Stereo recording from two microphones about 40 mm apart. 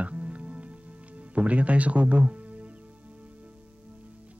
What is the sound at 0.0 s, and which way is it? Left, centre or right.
Music, right.